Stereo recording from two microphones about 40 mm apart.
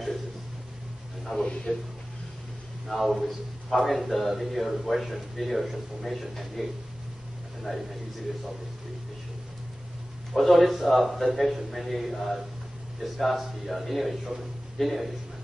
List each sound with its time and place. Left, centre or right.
1.3 s speech: centre
2.9 s a man's voice: centre
10.3 s a man's voice: centre